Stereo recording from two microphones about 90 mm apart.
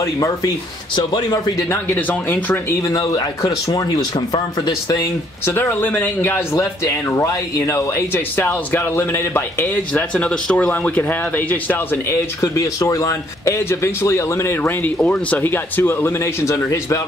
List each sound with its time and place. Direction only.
0.0 s a man's voice: 40° left (ahead or behind)
0.9 s speech: 55° left (ahead or behind)
2.0 s speech: 20° left (ahead or behind)
2.9 s speech: 45° left (ahead or behind)
5.5 s speech: 25° left (ahead or behind)
6.5 s speech: 35° left (ahead or behind)
12.1 s a man's voice: 35° left (ahead or behind)